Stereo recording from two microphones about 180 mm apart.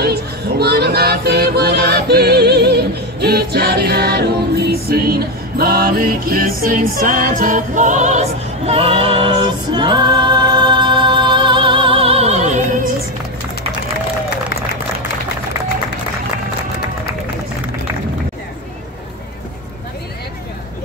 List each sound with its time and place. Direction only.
0.0 s music: 60° right (ahead or behind); by 12.9 s 45° right (ahead or behind)